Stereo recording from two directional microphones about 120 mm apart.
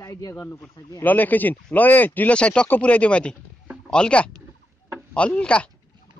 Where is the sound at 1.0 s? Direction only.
15° left (ahead or behind).